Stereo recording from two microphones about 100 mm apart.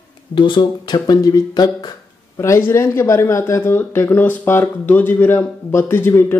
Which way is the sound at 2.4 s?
30° left (ahead or behind).